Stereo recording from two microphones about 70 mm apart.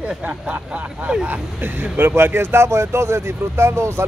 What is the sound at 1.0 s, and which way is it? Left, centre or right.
Speech, right.